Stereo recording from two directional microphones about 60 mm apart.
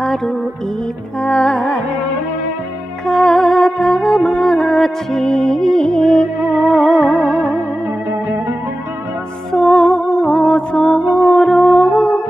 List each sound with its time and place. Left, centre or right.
1.2 s music: centre
3.1 s music: centre
6.5 s music: centre
9.5 s music: centre